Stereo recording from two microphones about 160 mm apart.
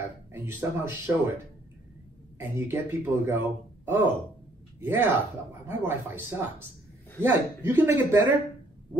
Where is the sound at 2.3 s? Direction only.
15° right (ahead or behind).